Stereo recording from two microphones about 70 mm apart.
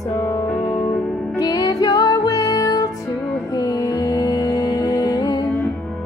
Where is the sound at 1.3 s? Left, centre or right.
Left.